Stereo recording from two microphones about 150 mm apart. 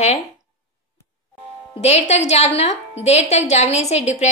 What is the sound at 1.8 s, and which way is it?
A woman's voice, 45° left (ahead or behind).